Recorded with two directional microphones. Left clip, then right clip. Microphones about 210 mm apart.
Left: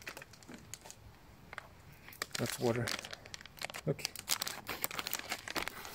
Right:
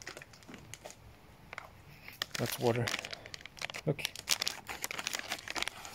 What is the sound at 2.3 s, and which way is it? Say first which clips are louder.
Crumpling: right 3 dB; 15° right (ahead or behind).